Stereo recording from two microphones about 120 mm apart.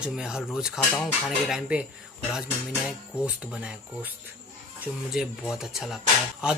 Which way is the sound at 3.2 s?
15° right (ahead or behind).